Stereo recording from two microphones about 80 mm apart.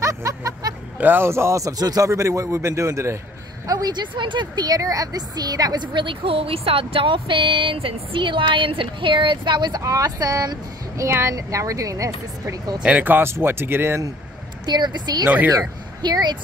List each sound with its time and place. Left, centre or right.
0.0 s music: right
0.9 s a man's voice: right
3.6 s speech: right
4.6 s a woman's voice: right
6.9 s speech: right
12.8 s speech: right
14.7 s speech: right